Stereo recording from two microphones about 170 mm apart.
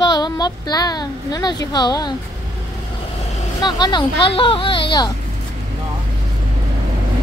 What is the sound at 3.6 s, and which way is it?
Speech, 25° left (ahead or behind).